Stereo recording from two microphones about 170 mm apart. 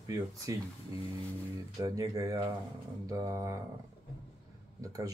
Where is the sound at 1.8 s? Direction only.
20° right (ahead or behind).